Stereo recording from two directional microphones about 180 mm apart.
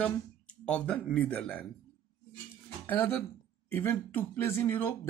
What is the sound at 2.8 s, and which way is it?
Speech, 10° left (ahead or behind).